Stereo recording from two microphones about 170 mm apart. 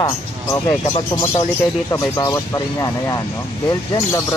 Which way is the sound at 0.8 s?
30° left (ahead or behind).